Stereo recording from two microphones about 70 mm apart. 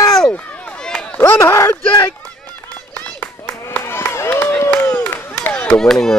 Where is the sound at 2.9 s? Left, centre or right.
Left.